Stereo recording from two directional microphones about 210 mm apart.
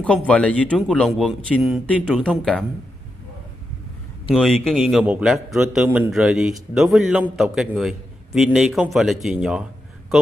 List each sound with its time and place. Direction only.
0.0 s a man's voice: 5° left (ahead or behind)
4.4 s a man's voice: centre (ahead or behind)